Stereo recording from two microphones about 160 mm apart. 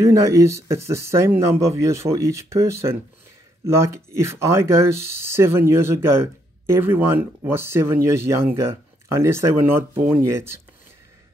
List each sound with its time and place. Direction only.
0.2 s speech: 20° right (ahead or behind)